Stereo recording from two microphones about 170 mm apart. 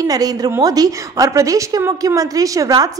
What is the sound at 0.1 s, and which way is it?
A woman's voice, 20° right (ahead or behind).